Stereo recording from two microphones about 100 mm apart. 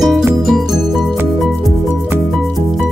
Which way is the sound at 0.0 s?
5° right (ahead or behind).